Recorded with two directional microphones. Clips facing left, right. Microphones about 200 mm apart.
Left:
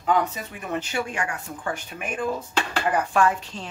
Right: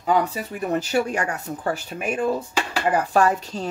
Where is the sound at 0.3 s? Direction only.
40° right (ahead or behind).